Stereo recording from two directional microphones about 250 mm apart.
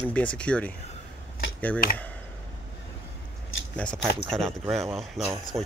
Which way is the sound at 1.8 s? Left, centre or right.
Left.